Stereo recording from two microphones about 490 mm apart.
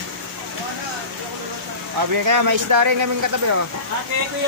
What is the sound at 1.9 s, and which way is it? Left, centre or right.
Speech, right.